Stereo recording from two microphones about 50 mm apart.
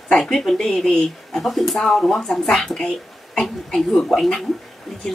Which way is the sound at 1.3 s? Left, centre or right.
Centre.